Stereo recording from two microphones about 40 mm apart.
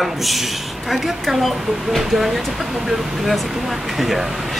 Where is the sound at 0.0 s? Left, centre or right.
Centre.